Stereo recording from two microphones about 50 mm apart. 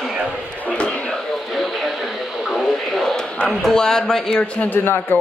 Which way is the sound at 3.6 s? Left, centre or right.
Centre.